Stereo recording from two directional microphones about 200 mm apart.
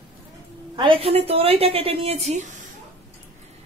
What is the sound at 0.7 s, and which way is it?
A woman's voice, 25° right (ahead or behind).